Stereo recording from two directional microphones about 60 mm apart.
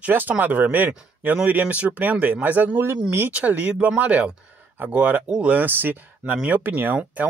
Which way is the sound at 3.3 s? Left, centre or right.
Right.